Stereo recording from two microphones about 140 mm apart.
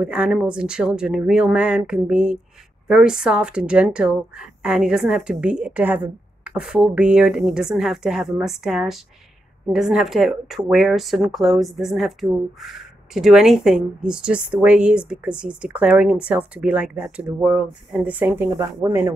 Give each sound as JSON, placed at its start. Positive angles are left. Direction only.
{"t": 0.0, "sound": "a woman's voice", "side_deg": -10}